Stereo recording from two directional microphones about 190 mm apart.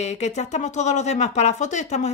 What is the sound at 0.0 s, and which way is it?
Speech, 35° left (ahead or behind).